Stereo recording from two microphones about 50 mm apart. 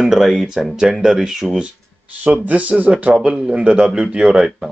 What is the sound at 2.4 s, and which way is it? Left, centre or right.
Speech, right.